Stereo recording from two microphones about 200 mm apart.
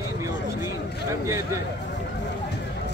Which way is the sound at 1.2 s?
15° right (ahead or behind).